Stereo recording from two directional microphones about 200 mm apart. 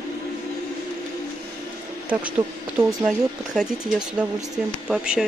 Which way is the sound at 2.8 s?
20° right (ahead or behind).